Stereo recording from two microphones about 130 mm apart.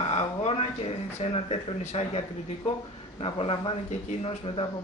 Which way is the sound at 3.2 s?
45° left (ahead or behind).